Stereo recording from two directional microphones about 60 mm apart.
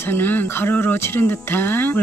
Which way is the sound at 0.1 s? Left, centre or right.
Left.